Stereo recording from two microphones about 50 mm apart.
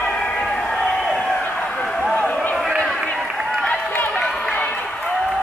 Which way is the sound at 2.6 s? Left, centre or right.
Centre.